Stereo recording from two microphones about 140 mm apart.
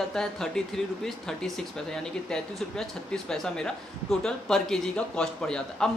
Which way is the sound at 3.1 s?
5° left (ahead or behind).